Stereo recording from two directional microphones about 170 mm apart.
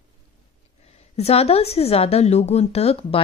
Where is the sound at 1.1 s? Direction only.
35° left (ahead or behind).